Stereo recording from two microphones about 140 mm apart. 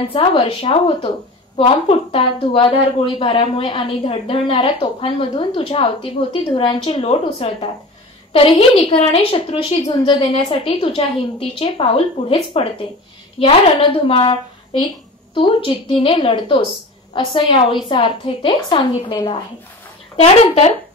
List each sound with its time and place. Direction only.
0.1 s a woman's voice: 40° left (ahead or behind)
20.2 s speech: 50° left (ahead or behind)